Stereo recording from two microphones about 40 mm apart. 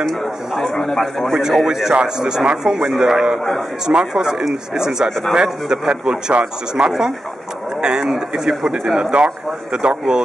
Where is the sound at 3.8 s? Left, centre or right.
Centre.